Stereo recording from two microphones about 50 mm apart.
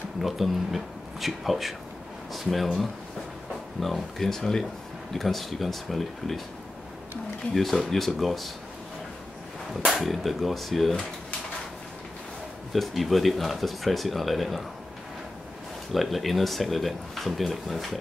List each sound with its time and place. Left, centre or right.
0.2 s speech: centre
7.5 s speech: centre
10.0 s speech: centre
12.7 s speech: centre
15.9 s speech: centre